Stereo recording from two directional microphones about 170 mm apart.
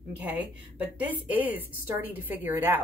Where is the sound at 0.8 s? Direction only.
10° right (ahead or behind).